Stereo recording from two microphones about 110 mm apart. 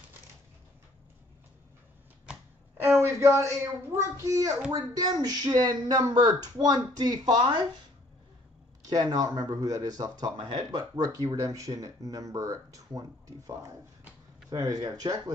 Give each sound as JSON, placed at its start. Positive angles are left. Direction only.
{"t": 3.3, "sound": "a child's voice", "side_deg": -25}
{"t": 8.8, "sound": "speech", "side_deg": -35}
{"t": 14.5, "sound": "speech", "side_deg": -35}